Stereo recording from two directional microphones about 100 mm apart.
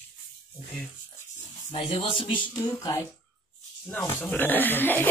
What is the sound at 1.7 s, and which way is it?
Speech, 75° left (ahead or behind).